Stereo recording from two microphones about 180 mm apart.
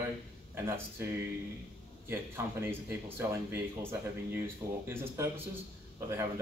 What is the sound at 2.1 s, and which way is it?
A man's voice, 15° right (ahead or behind).